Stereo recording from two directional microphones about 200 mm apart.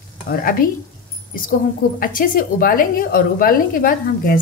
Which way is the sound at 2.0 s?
45° left (ahead or behind).